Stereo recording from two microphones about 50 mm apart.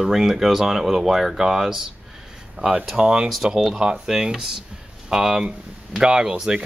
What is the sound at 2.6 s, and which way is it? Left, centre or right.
Speech, right.